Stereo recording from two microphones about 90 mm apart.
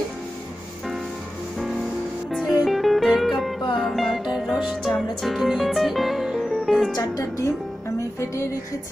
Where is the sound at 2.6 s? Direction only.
Centre (ahead or behind).